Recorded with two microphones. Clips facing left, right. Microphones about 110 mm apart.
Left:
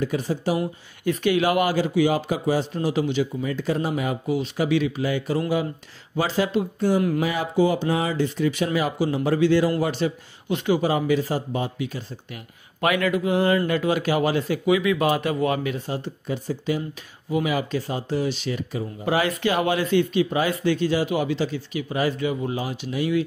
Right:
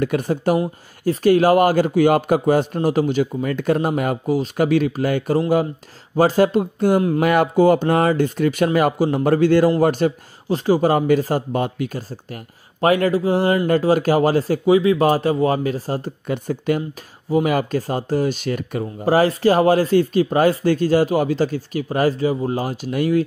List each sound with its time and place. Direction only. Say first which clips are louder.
0.0 s a man's voice: right 5 dB; 55° right (ahead or behind)
1.0 s a man's voice: right 6 dB; 40° right (ahead or behind)
10.5 s a man's voice: right 5 dB; 35° right (ahead or behind)
16.3 s a man's voice: right 5 dB; 55° right (ahead or behind)
19.0 s a man's voice: right 7 dB; 40° right (ahead or behind)